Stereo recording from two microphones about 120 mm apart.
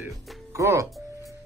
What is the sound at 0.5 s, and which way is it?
Speech, 25° right (ahead or behind).